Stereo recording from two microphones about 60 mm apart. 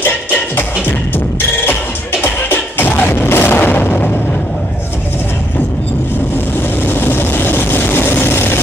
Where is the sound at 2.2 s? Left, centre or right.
Left.